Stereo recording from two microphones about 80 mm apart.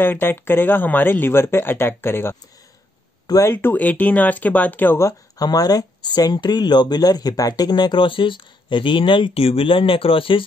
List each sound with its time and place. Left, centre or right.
0.0 s speech: left
3.4 s speech: left
5.4 s speech: left